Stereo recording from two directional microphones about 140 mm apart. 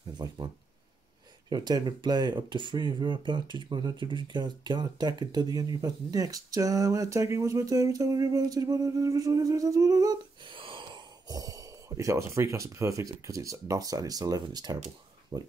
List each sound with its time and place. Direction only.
0.2 s a sound: 30° right (ahead or behind)
1.5 s speech: 30° right (ahead or behind)
10.4 s speech: 35° right (ahead or behind)